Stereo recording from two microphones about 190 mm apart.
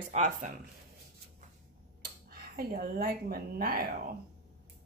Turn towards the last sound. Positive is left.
turn(degrees=-50)  # may be behind; listen again after turning